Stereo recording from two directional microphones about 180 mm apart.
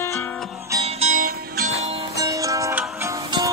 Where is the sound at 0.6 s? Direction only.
15° right (ahead or behind).